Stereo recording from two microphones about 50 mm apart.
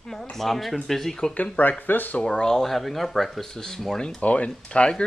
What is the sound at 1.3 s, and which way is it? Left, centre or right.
Speech, left.